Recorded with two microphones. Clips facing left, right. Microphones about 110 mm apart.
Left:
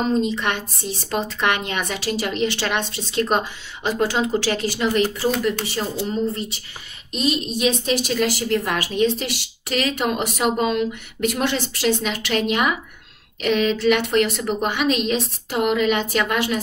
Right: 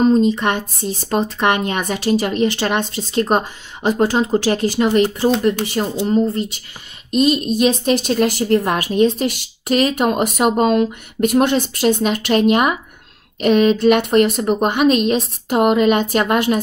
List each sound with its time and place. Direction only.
0.2 s speech: 45° right (ahead or behind)
6.0 s a woman's voice: 45° right (ahead or behind)